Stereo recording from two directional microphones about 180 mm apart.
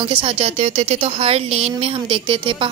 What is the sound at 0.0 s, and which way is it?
Speech, 30° right (ahead or behind).